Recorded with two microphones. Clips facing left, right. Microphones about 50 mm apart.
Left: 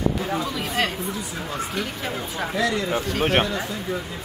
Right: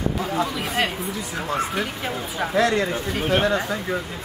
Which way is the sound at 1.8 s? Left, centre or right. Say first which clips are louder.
Right 1 dB; centre.